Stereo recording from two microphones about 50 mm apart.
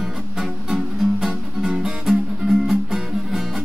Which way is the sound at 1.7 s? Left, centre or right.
Centre.